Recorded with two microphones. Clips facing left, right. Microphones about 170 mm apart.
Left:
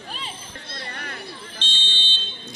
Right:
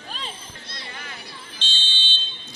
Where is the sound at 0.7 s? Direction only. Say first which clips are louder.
Left 4 dB; 50° left (ahead or behind).